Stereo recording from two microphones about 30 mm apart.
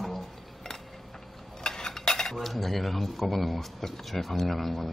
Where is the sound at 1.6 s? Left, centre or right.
Left.